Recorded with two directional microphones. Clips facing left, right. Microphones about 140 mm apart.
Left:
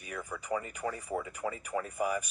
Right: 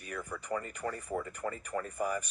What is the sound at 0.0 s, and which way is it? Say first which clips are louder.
A man's voice: even; 5° left (ahead or behind).